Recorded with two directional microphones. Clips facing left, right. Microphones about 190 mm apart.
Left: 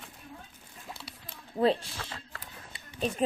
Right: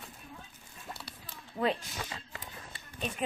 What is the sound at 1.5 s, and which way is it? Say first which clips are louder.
Speech: left 5 dB; 30° left (ahead or behind).